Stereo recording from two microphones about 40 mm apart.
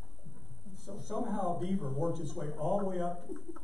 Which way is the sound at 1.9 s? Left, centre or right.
Centre.